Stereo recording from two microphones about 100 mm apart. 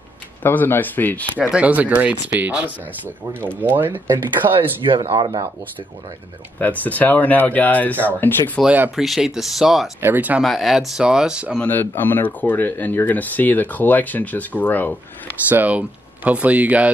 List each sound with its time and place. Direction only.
0.4 s speech: 20° left (ahead or behind)
1.3 s speech: 15° right (ahead or behind)
3.7 s speech: 20° right (ahead or behind)
4.4 s speech: 55° right (ahead or behind)
6.6 s speech: 15° left (ahead or behind)
8.6 s speech: 15° right (ahead or behind)
8.9 s speech: centre (ahead or behind)
9.9 s speech: 20° right (ahead or behind)
10.4 s speech: centre (ahead or behind)
11.6 s speech: 20° left (ahead or behind)
15.4 s speech: 15° right (ahead or behind)